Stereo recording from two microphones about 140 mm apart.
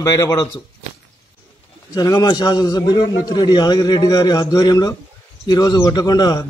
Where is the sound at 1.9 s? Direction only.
30° left (ahead or behind).